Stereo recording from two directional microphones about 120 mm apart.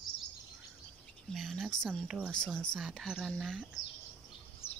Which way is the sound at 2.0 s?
5° right (ahead or behind).